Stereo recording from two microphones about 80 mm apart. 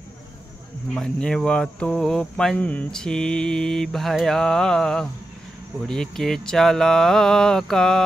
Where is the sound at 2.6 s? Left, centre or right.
Centre.